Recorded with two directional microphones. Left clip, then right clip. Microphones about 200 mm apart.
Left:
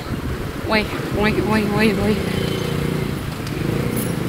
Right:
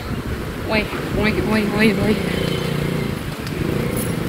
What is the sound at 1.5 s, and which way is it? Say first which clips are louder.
Speech: even; 5° left (ahead or behind).